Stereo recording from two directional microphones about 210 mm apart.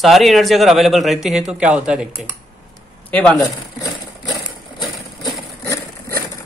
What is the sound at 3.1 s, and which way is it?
Speech, 5° left (ahead or behind).